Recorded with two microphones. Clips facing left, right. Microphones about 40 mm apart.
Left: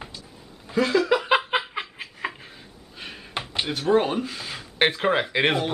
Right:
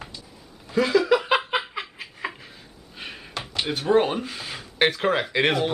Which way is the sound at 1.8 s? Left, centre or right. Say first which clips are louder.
Left 1 dB; centre.